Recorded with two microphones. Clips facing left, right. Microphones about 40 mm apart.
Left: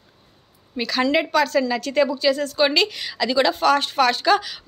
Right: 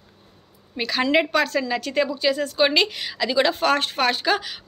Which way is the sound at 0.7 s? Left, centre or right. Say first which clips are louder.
Even; right.